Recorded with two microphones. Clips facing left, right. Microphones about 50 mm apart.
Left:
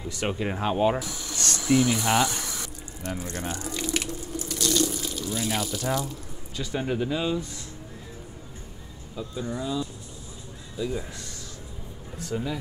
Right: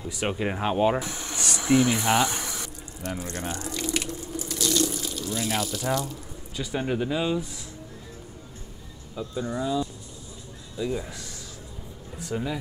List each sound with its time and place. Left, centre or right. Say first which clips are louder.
0.1 s speech: right 1 dB; centre
0.9 s speech: right 2 dB; right
1.3 s a sound: left 1 dB; centre
1.6 s speech: right 1 dB; centre
2.5 s water: even; centre
4.3 s speech: even; centre
9.2 s speech: right 2 dB; centre